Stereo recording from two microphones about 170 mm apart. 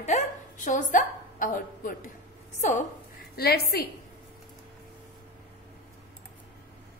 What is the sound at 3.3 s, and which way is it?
Speech, 65° left (ahead or behind).